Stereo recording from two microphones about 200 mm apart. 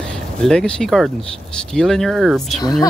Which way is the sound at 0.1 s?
5° left (ahead or behind).